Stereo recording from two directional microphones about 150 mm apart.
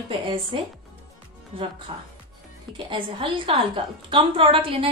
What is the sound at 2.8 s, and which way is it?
A woman's voice, 35° right (ahead or behind).